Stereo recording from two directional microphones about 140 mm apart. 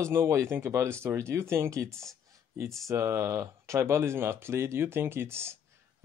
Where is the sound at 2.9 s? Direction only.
20° right (ahead or behind).